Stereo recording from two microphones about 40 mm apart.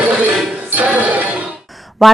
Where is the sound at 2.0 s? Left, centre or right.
Centre.